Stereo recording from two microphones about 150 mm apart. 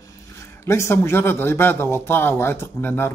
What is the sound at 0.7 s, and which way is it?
A man's voice, 20° left (ahead or behind).